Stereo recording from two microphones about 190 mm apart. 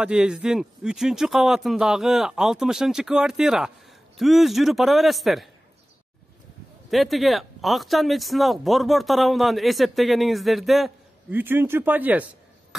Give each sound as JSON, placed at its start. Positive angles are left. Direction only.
{"t": 0.0, "sound": "speech", "side_deg": -5}
{"t": 6.9, "sound": "speech", "side_deg": 0}